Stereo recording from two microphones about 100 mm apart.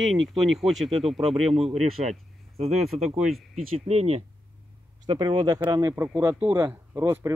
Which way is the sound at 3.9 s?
85° right.